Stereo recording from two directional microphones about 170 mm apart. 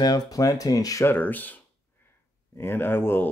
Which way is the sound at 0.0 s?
20° left (ahead or behind).